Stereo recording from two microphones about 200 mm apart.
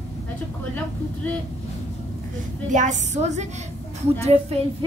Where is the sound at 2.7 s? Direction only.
35° right (ahead or behind).